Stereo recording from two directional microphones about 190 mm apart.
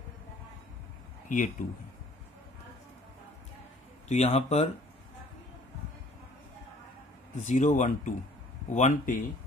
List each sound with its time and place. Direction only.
1.3 s speech: 45° left (ahead or behind)
4.1 s speech: 35° left (ahead or behind)
7.4 s speech: 40° left (ahead or behind)